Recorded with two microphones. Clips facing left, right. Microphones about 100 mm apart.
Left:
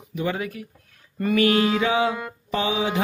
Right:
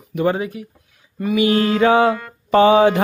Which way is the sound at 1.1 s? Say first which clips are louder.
Right 2 dB; 5° right (ahead or behind).